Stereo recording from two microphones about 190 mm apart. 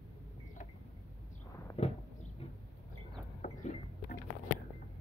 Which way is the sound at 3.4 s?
40° left (ahead or behind).